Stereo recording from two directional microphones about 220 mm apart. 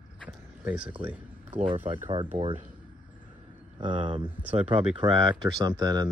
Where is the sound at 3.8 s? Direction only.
20° right (ahead or behind).